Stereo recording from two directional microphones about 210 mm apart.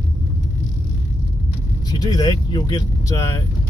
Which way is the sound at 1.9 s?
20° left (ahead or behind).